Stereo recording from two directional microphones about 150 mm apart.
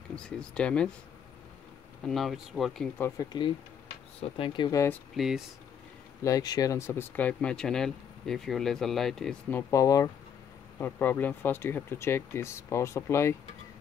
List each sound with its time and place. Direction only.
0.1 s speech: 5° left (ahead or behind)
2.0 s speech: centre (ahead or behind)
3.0 s speech: 25° left (ahead or behind)
4.6 s speech: 20° left (ahead or behind)
5.1 s speech: centre (ahead or behind)
6.2 s speech: 25° left (ahead or behind)
10.8 s speech: 15° left (ahead or behind)